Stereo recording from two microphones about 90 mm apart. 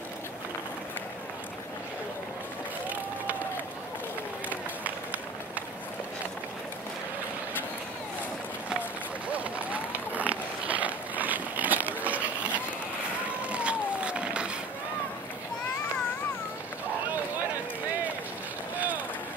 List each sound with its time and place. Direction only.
4.5 s run: 15° right (ahead or behind)
9.3 s a sound: 15° right (ahead or behind)
13.4 s vehicle: 15° right (ahead or behind)